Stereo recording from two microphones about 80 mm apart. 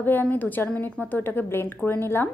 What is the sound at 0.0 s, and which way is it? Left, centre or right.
A woman's voice, left.